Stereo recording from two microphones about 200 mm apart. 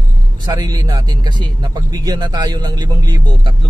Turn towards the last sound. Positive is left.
turn(degrees=-20)  # may be behind; listen again after turning